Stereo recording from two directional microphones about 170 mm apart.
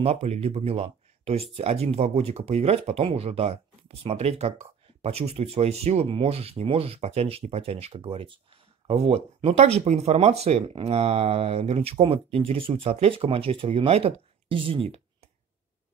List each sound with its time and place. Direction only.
0.0 s speech: 35° right (ahead or behind)